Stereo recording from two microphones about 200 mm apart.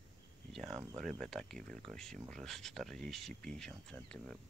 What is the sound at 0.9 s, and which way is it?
Speech, centre (ahead or behind).